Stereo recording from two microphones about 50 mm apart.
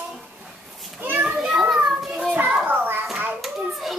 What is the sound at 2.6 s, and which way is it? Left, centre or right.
Children playing, right.